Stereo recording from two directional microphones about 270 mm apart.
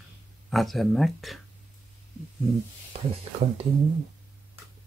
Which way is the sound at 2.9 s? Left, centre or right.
Right.